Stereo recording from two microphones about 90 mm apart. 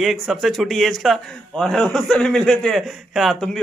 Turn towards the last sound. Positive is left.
turn(degrees=5)  # may be behind; listen again after turning